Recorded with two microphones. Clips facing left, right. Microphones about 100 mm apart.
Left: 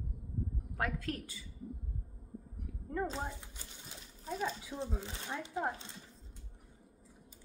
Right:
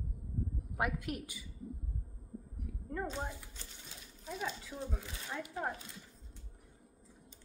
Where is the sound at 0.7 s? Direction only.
15° right (ahead or behind).